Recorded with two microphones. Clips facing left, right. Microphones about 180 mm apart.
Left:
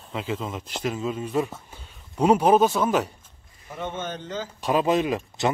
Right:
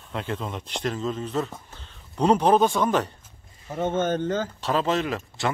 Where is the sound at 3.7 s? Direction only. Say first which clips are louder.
Right 8 dB; 45° right (ahead or behind).